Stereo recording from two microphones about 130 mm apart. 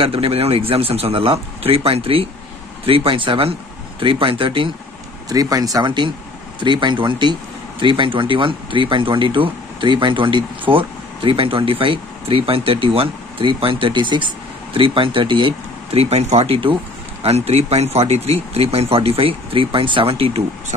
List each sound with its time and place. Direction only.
0.0 s speech: 45° right (ahead or behind)
5.3 s speech: 30° right (ahead or behind); by 20.4 s 45° right (ahead or behind)